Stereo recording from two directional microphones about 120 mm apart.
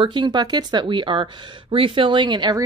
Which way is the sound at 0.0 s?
40° right (ahead or behind).